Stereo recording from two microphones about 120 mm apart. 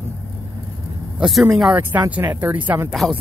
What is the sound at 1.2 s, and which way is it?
Speech, centre (ahead or behind).